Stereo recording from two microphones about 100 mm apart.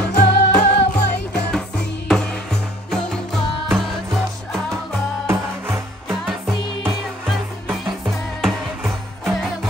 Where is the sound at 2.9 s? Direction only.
5° left (ahead or behind).